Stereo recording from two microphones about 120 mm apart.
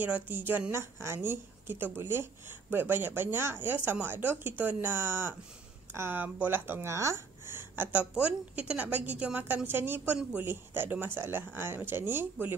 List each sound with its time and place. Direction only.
0.0 s speech: 15° right (ahead or behind)